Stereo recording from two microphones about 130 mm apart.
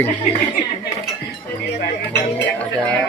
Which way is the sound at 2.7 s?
10° left (ahead or behind).